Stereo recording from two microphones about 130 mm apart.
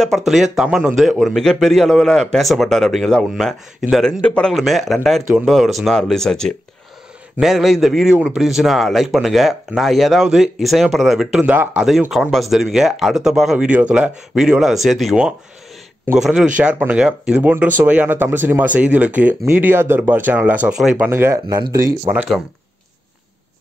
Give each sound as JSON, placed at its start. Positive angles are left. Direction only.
{"t": 0.0, "sound": "a man's voice", "side_deg": 0}
{"t": 11.5, "sound": "speech", "side_deg": -15}
{"t": 12.1, "sound": "a man's voice", "side_deg": 0}
{"t": 21.1, "sound": "speech", "side_deg": -20}
{"t": 21.5, "sound": "speech", "side_deg": -30}
{"t": 22.1, "sound": "speech", "side_deg": -10}